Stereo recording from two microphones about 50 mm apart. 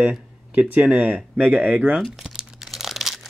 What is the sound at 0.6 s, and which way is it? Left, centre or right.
Speech, right.